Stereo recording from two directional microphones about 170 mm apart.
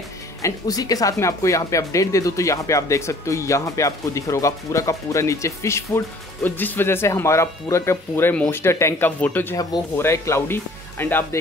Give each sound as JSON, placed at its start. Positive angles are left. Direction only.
{"t": 0.4, "sound": "speech", "side_deg": 20}